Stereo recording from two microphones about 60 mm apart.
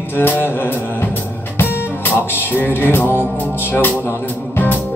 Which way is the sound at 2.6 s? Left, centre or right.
Left.